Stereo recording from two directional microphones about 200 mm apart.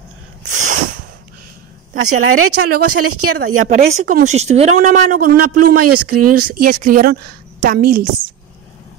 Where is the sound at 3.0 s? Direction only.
90° right.